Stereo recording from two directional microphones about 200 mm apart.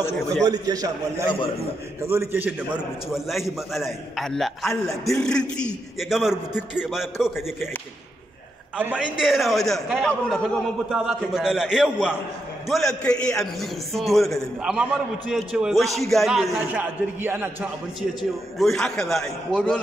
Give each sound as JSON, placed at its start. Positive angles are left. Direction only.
{"t": 0.4, "sound": "a man's voice", "side_deg": -20}
{"t": 2.0, "sound": "a man's voice", "side_deg": -10}
{"t": 8.7, "sound": "a man's voice", "side_deg": -5}
{"t": 18.6, "sound": "a man's voice", "side_deg": 0}